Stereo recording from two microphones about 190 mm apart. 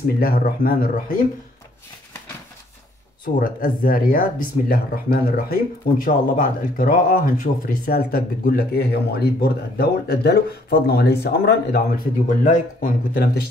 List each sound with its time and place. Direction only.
0.0 s speech: 50° left (ahead or behind)
3.3 s speech: 45° left (ahead or behind)